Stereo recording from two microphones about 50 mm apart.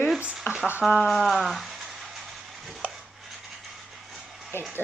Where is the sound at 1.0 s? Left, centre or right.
Centre.